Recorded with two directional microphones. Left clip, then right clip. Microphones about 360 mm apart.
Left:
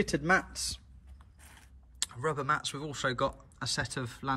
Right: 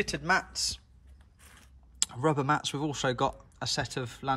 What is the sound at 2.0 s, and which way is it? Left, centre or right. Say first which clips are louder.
Speech: right 5 dB; centre.